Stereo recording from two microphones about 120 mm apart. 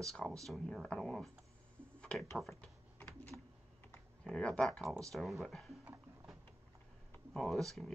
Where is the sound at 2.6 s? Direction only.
10° left (ahead or behind).